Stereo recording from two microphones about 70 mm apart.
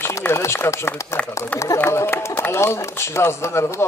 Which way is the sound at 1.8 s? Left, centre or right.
Left.